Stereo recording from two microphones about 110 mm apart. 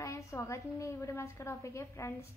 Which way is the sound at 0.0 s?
30° left (ahead or behind).